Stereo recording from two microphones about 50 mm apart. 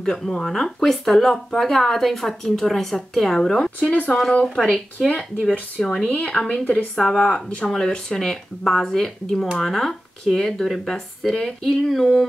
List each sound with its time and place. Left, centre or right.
0.0 s speech: centre
5.0 s speech: centre
6.6 s a woman's voice: left
7.0 s speech: centre
7.2 s speech: centre